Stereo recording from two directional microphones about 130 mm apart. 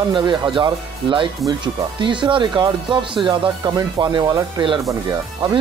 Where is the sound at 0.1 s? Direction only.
35° right (ahead or behind).